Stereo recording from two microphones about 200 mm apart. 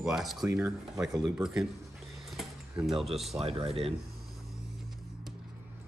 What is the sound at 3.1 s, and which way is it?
Coin, centre (ahead or behind).